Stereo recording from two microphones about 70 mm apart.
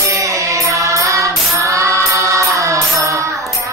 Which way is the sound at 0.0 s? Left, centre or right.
Right.